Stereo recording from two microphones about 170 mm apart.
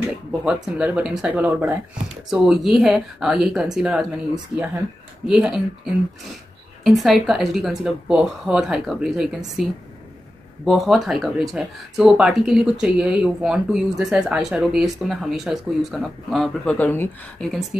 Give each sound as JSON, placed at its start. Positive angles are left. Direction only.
{"t": 0.5, "sound": "speech", "side_deg": -5}
{"t": 2.3, "sound": "speech", "side_deg": 0}
{"t": 5.2, "sound": "speech", "side_deg": -5}
{"t": 6.8, "sound": "speech", "side_deg": 0}